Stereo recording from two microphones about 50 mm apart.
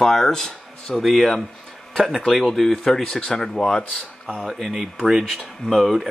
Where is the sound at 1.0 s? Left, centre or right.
Centre.